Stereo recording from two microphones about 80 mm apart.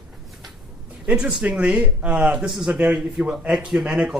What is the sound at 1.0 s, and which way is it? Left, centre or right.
Speech, centre.